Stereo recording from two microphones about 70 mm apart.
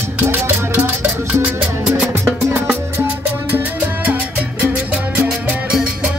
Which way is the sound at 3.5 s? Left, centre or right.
Right.